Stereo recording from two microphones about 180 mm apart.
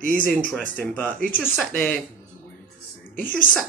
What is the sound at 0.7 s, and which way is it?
Speech, 10° left (ahead or behind).